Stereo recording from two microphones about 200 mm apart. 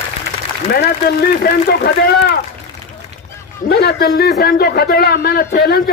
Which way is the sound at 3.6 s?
50° left (ahead or behind).